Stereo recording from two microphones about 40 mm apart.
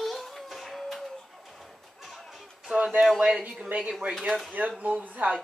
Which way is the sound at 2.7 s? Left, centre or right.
Right.